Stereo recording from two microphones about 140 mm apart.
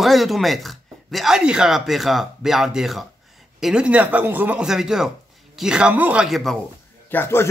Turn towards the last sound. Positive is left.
turn(degrees=15)  # may be behind; listen again after turning